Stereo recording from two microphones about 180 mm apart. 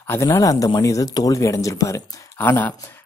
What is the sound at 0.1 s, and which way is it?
Speech, 15° left (ahead or behind).